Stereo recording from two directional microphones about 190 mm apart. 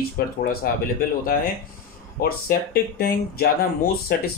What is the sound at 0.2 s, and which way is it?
Speech, 50° left (ahead or behind).